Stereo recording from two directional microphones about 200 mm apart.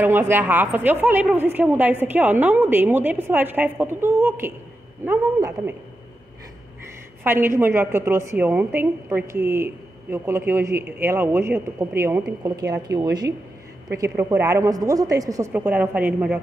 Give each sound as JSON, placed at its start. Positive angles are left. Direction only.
{"t": 0.0, "sound": "a woman's voice", "side_deg": -10}
{"t": 7.2, "sound": "a woman's voice", "side_deg": -10}